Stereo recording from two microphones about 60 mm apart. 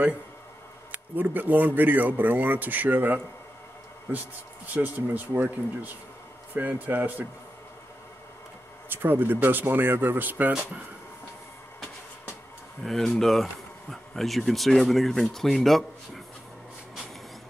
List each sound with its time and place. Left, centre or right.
0.9 s speech: right
4.7 s speech: right
8.8 s speech: right
12.8 s speech: centre